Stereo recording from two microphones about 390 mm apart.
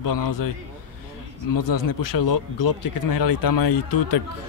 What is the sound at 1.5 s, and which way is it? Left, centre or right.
Speech, left.